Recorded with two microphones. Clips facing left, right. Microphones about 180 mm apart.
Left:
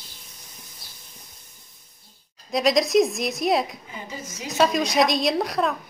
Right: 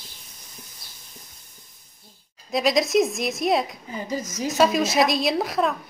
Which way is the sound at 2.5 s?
Centre (ahead or behind).